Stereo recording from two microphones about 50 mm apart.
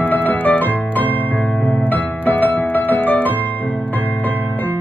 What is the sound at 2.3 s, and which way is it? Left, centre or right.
Music, left.